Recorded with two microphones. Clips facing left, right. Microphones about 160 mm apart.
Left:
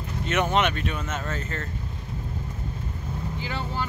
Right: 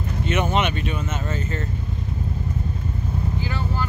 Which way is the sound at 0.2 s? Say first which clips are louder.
Right 1 dB; centre (ahead or behind).